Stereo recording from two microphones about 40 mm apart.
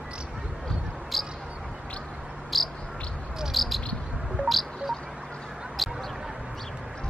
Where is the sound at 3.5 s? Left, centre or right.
Centre.